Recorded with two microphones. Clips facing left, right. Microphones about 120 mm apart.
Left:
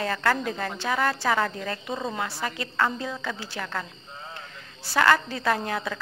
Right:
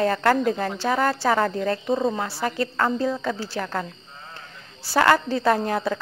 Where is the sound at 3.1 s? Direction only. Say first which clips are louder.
Right 7 dB; centre (ahead or behind).